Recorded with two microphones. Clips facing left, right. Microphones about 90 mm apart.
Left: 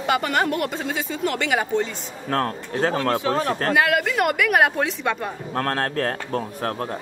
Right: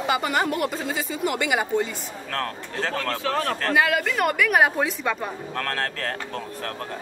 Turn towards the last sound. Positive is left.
turn(degrees=35)  # may be behind; listen again after turning